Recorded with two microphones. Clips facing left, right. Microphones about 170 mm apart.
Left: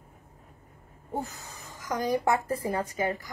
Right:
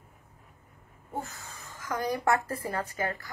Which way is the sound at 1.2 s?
15° left (ahead or behind).